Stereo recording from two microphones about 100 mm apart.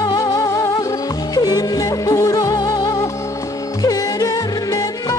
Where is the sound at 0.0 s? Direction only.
40° left (ahead or behind).